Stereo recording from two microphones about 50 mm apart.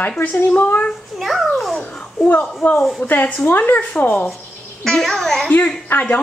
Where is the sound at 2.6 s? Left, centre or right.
Left.